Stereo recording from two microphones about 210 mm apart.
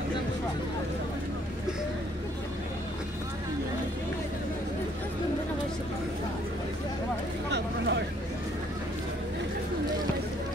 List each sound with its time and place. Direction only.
7.5 s vehicle: 55° right (ahead or behind)